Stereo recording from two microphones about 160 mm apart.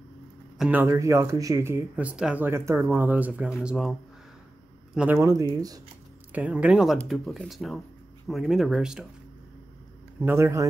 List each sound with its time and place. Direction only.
0.6 s speech: 10° right (ahead or behind)
4.9 s speech: 10° right (ahead or behind)
6.3 s speech: 10° right (ahead or behind)
10.2 s speech: 15° right (ahead or behind)